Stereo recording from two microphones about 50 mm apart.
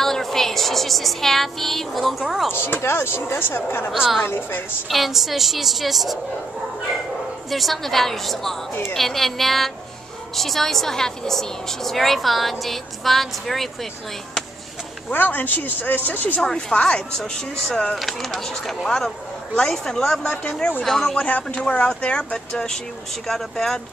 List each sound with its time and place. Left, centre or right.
0.0 s child singing: centre
2.5 s speech: left
3.9 s a woman's voice: centre
4.2 s speech: left
4.8 s a woman's voice: centre
7.5 s a woman's voice: centre
15.0 s speech: left
16.5 s speech: left
17.2 s a woman's voice: centre
21.2 s a woman's voice: left; by 23.8 s centre